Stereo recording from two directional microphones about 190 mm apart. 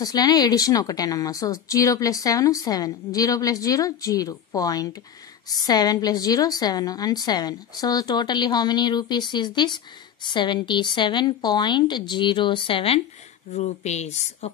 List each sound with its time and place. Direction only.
0.0 s a woman's voice: 20° left (ahead or behind); by 14.5 s 35° left (ahead or behind)